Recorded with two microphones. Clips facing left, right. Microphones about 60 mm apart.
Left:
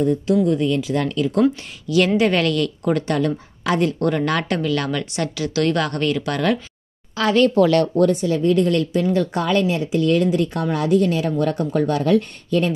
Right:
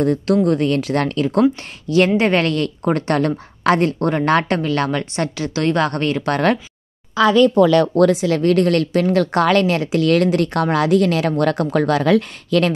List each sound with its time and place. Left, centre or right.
0.0 s speech: right
0.5 s a woman's voice: right
4.1 s a woman's voice: right
7.9 s speech: right